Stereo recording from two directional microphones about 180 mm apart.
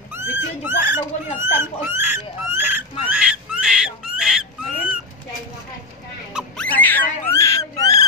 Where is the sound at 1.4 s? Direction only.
15° right (ahead or behind).